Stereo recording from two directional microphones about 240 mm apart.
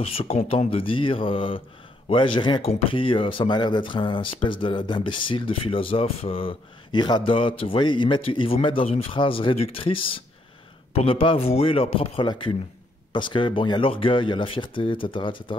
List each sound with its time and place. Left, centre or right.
0.0 s speech: left